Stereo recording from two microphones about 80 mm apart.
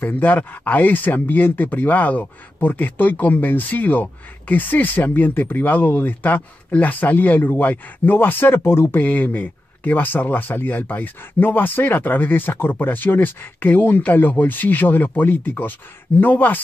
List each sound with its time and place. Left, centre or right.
0.0 s speech: left
9.0 s speech: left